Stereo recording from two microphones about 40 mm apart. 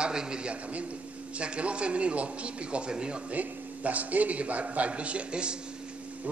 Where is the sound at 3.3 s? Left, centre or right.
Right.